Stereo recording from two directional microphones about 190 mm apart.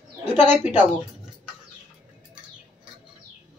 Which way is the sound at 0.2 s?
10° right (ahead or behind).